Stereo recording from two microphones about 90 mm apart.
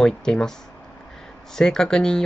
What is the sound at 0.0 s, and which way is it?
Speech, 5° left (ahead or behind).